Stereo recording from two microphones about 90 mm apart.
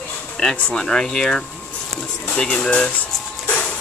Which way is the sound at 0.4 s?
10° left (ahead or behind).